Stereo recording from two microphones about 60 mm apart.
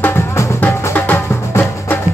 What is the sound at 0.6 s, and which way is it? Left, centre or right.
Music, left.